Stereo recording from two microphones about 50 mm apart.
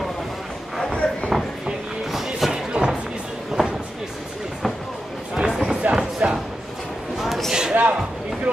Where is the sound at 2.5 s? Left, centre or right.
Centre.